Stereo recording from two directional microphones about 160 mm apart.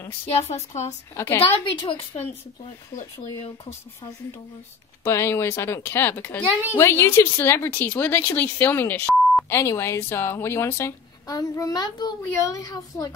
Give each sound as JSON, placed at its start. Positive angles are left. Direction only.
{"t": 0.3, "sound": "speech", "side_deg": 40}
{"t": 1.1, "sound": "speech", "side_deg": 15}
{"t": 1.8, "sound": "speech", "side_deg": 35}
{"t": 5.0, "sound": "speech", "side_deg": 15}
{"t": 9.5, "sound": "a woman's voice", "side_deg": 15}